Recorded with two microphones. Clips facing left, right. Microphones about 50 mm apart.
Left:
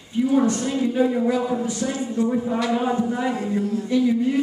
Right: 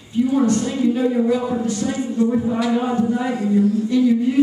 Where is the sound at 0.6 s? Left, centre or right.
Centre.